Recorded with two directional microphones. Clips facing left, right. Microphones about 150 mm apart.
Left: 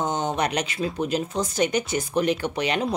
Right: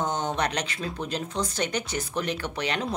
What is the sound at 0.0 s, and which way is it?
Speech, 10° left (ahead or behind).